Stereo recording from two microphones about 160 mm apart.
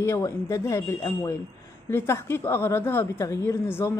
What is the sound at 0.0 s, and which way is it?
A woman's voice, 20° left (ahead or behind).